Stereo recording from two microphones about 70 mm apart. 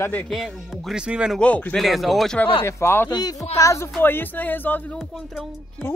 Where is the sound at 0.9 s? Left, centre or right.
Centre.